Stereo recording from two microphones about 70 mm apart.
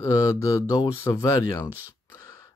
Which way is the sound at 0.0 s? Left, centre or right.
Left.